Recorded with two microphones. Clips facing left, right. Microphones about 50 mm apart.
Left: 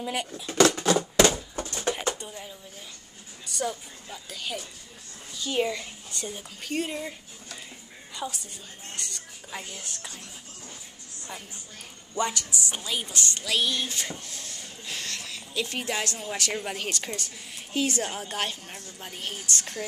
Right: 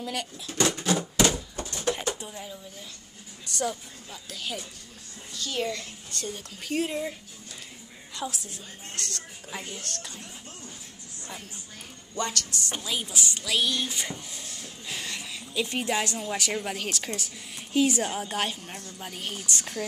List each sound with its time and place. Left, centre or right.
0.0 s speech: centre
0.9 s a sound: left
2.1 s speech: centre
5.4 s speech: centre
6.6 s speech: centre
8.2 s a woman's voice: centre
9.8 s speech: centre
12.2 s speech: centre
12.7 s speech: centre
14.3 s a sound: centre
15.6 s a woman's voice: centre